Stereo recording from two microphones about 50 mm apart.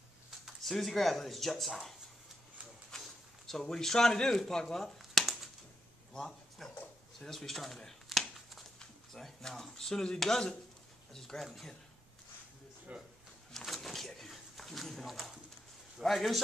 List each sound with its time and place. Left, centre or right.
0.5 s speech: centre
3.0 s a sound: centre
6.6 s speech: centre
7.2 s a sound: centre
8.7 s speech: centre
12.9 s speech: right
13.5 s pigeon: centre
16.0 s a man's voice: centre